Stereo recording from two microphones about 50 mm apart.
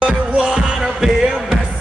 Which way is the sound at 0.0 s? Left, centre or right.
Right.